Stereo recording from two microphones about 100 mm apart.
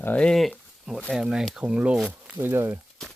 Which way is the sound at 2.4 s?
25° right (ahead or behind).